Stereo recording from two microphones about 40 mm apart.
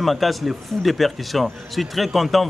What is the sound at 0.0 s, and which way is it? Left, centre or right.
A man's voice, centre.